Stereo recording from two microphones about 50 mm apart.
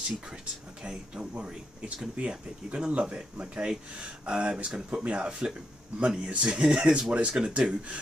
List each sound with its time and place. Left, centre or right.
0.8 s speech: centre